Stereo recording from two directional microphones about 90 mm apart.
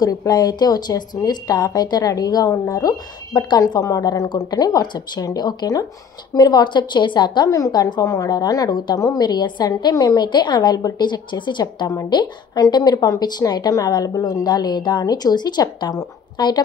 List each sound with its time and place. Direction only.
0.0 s a woman's voice: 45° left (ahead or behind)
7.4 s a woman's voice: 40° left (ahead or behind)
8.9 s a woman's voice: 40° left (ahead or behind); by 11.9 s 60° left (ahead or behind)
11.9 s a woman's voice: 45° left (ahead or behind)